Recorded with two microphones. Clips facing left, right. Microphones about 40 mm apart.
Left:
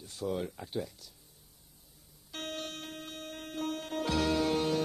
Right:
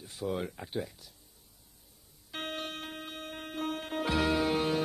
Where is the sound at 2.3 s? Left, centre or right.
Right.